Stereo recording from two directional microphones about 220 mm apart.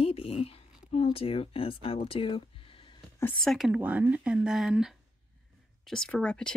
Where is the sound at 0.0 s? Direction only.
25° left (ahead or behind).